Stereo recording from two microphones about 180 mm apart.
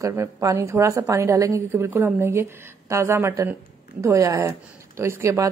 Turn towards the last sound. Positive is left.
turn(degrees=-15)  # may be behind; listen again after turning